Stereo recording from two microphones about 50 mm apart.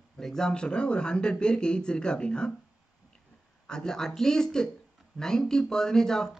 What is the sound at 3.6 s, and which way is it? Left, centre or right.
Speech, centre.